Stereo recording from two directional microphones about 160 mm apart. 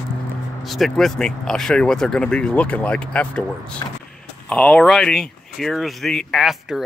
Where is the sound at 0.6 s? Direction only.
Centre (ahead or behind).